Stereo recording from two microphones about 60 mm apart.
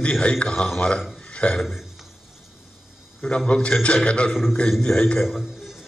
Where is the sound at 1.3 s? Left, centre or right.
Left.